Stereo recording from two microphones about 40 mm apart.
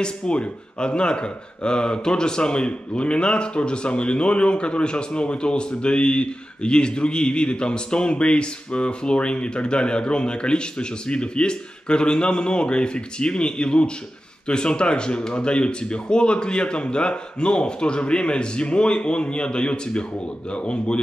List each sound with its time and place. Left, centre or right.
0.0 s speech: left